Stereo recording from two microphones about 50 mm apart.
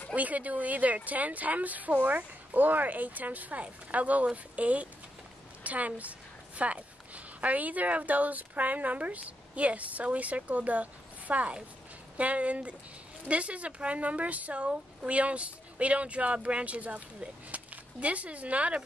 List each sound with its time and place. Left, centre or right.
0.1 s a woman's voice: right